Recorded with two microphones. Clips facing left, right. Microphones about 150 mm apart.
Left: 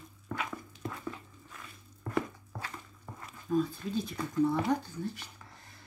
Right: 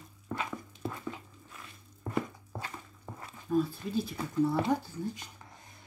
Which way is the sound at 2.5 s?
25° right (ahead or behind).